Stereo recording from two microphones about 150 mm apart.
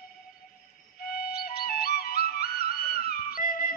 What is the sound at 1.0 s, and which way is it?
Music, 85° left.